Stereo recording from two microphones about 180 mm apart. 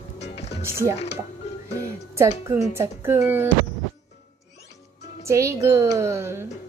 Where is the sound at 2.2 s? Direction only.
15° right (ahead or behind).